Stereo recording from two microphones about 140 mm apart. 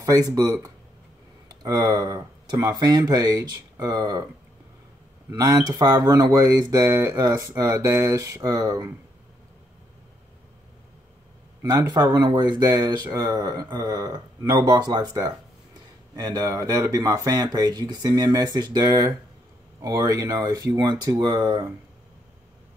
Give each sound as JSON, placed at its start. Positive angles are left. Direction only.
{"t": 0.0, "sound": "speech", "side_deg": -25}
{"t": 5.3, "sound": "speech", "side_deg": -25}
{"t": 11.6, "sound": "speech", "side_deg": -25}